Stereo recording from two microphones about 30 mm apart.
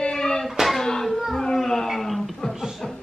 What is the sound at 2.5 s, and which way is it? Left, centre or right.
Chuckle, centre.